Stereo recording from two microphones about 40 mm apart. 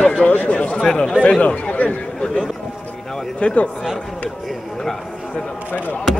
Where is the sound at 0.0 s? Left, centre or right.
Left.